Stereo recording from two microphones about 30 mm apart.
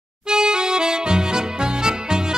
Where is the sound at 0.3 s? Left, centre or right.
Right.